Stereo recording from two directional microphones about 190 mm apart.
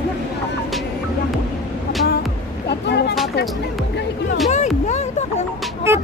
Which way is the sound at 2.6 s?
60° left (ahead or behind).